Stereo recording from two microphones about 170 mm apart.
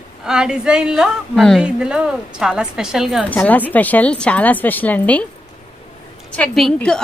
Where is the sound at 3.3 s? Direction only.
10° left (ahead or behind).